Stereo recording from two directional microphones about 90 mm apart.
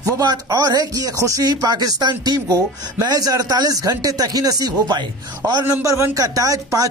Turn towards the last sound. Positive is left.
turn(degrees=-40)  # may be behind; listen again after turning